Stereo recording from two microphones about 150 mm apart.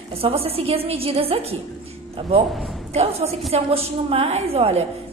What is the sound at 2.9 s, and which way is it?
A woman's voice, 45° right (ahead or behind).